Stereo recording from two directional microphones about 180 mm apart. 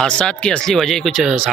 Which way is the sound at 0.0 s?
5° left (ahead or behind).